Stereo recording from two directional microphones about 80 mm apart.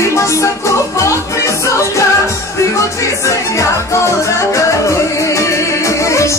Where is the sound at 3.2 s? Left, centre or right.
Left.